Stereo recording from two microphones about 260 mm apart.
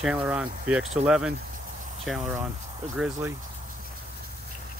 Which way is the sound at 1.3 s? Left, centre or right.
Right.